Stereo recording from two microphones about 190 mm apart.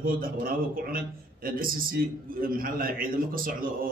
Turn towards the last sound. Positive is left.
turn(degrees=-50)  # may be behind; listen again after turning